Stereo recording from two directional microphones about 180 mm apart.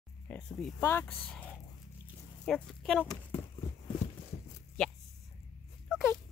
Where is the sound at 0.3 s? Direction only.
5° left (ahead or behind).